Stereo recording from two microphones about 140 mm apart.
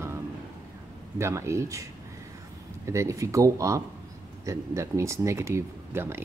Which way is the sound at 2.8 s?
20° right (ahead or behind).